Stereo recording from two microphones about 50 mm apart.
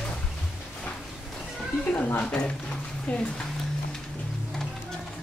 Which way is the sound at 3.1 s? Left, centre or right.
Left.